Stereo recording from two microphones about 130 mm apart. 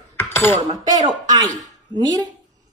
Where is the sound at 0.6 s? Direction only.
30° right (ahead or behind).